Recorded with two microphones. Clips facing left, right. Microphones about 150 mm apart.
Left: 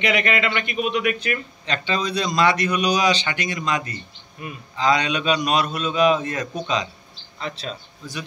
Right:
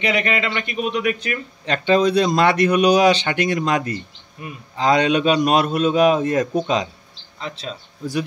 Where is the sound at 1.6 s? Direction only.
50° right (ahead or behind).